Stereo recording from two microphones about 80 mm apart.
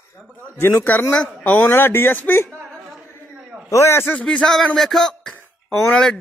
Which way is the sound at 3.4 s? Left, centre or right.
Centre.